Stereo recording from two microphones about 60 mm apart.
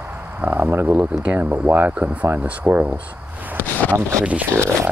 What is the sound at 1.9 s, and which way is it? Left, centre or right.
Speech, right.